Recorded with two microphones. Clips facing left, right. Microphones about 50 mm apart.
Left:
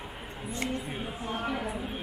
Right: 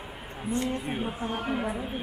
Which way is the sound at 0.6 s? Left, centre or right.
Right.